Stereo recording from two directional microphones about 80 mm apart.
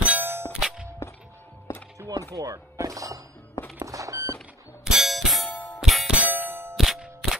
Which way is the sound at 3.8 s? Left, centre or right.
Right.